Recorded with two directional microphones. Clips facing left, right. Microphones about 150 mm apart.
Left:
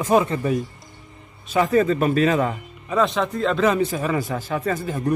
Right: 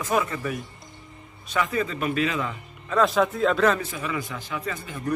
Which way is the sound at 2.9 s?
Centre (ahead or behind).